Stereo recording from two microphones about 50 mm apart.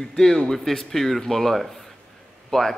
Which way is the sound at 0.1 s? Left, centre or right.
Centre.